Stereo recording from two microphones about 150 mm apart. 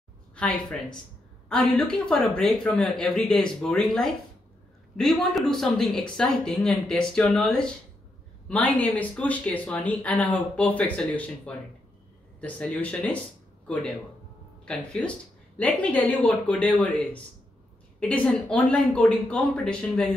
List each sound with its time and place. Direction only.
0.4 s speech: 5° left (ahead or behind)
14.6 s speech: 5° left (ahead or behind)